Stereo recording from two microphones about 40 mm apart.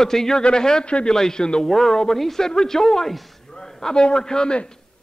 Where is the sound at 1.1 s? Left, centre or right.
Centre.